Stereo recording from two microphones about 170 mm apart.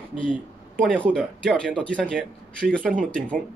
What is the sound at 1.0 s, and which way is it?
A man's voice, 5° left (ahead or behind).